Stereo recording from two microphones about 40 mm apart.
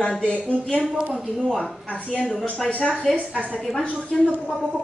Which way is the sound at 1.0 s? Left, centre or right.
Right.